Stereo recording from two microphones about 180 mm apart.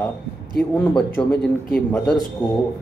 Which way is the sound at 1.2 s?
5° left (ahead or behind).